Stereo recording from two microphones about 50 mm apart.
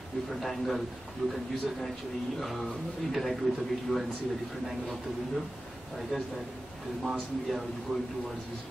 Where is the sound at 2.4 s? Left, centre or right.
Centre.